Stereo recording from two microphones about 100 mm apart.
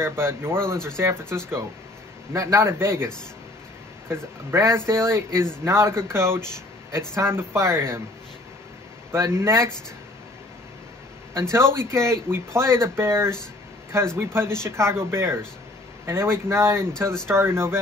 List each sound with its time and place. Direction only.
0.0 s speech: 25° right (ahead or behind)
4.1 s speech: 25° right (ahead or behind)
9.1 s speech: 25° right (ahead or behind)
11.3 s speech: 25° right (ahead or behind)